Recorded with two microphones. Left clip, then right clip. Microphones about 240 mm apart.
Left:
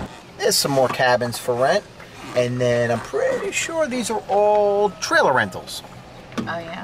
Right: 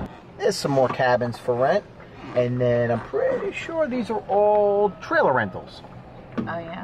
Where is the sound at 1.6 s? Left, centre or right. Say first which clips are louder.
Left 2 dB; centre.